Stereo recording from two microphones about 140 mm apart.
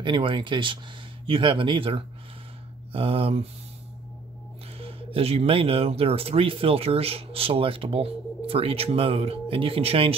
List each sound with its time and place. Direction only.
0.0 s speech: 35° right (ahead or behind)
4.7 s speech: 45° right (ahead or behind)